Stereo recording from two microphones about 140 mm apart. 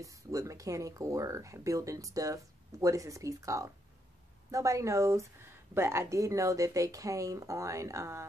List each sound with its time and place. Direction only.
0.0 s speech: 25° right (ahead or behind)